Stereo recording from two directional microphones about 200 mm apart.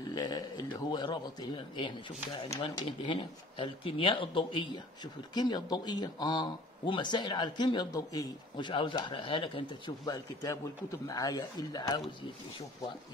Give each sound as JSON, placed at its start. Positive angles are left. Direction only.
{"t": 0.1, "sound": "speech", "side_deg": 20}
{"t": 2.3, "sound": "speech", "side_deg": 25}